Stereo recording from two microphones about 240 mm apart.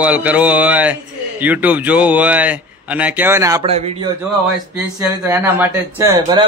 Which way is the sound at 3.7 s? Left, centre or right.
Right.